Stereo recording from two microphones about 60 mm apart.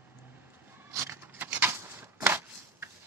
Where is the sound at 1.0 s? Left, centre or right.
Right.